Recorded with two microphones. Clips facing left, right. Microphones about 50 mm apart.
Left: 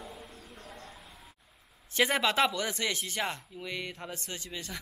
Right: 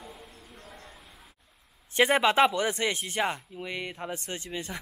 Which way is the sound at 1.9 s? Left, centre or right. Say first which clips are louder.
Right 5 dB; right.